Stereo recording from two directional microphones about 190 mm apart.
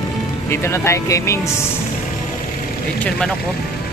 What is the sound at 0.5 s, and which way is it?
Speech, 15° left (ahead or behind).